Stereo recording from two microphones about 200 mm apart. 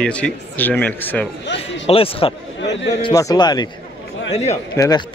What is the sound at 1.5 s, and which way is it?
Speech, 30° left (ahead or behind).